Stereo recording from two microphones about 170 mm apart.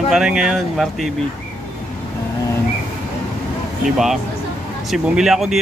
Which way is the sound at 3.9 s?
Centre (ahead or behind).